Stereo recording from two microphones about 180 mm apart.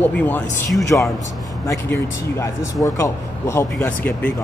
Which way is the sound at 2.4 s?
15° left (ahead or behind).